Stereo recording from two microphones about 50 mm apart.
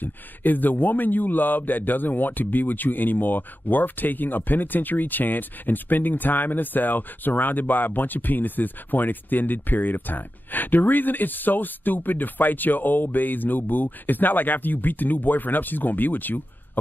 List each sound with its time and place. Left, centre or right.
0.0 s speech: left